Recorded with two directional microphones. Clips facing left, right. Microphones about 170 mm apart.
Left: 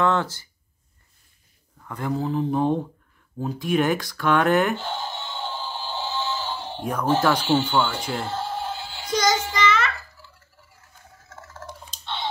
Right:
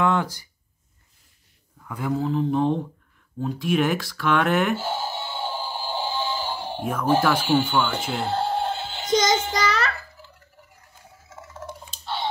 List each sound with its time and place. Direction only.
0.0 s speech: 15° right (ahead or behind)
1.9 s speech: 5° right (ahead or behind)
3.3 s a sound: centre (ahead or behind)
6.9 s speech: 5° right (ahead or behind)
8.3 s music: 30° right (ahead or behind)
9.5 s a sound: 35° right (ahead or behind)
10.1 s fowl: 15° right (ahead or behind)